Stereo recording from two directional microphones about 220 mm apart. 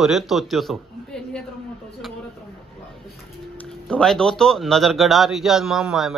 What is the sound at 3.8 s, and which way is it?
A man's voice, 5° left (ahead or behind).